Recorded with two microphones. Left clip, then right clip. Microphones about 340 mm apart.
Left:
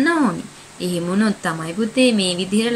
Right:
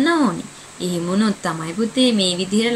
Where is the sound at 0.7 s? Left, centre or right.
Centre.